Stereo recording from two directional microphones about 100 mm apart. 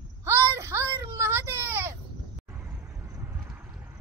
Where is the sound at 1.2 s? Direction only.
25° right (ahead or behind).